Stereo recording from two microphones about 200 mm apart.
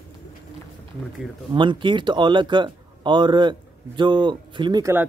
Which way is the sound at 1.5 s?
25° right (ahead or behind).